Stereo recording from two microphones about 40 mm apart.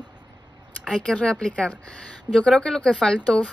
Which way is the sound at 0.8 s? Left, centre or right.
Left.